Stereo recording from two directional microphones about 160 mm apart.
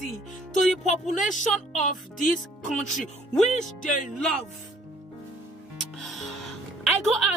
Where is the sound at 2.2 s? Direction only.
Centre (ahead or behind).